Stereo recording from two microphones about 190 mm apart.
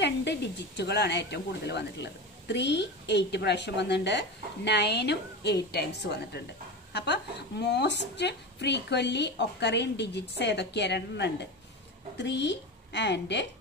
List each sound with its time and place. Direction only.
0.0 s a woman's voice: 65° left (ahead or behind)